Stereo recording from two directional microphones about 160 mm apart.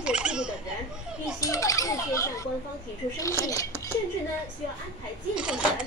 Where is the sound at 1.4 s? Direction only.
20° left (ahead or behind).